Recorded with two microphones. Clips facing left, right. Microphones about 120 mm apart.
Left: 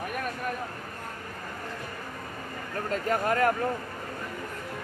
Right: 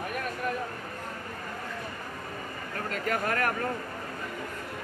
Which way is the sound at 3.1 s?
25° left (ahead or behind).